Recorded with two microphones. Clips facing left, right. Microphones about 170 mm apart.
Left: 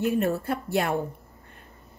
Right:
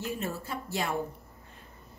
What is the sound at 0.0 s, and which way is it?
Speech, 60° left (ahead or behind).